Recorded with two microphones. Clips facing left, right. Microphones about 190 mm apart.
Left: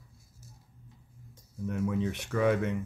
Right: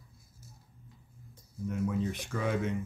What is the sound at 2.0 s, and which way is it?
Speech, 70° left (ahead or behind).